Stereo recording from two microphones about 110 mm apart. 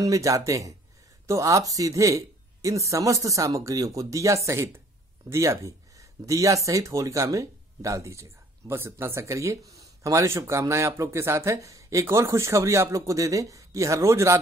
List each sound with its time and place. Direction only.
0.0 s speech: 30° right (ahead or behind)